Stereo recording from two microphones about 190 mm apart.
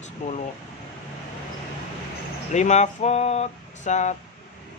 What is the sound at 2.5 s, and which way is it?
Speech, 35° left (ahead or behind).